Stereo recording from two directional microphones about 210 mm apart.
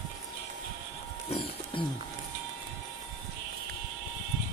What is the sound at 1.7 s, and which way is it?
Music, 25° left (ahead or behind).